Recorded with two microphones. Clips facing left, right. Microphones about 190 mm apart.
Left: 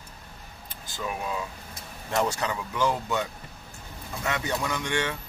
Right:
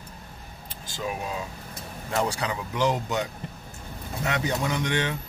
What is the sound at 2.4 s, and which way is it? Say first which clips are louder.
Speech: right 1 dB; 20° right (ahead or behind).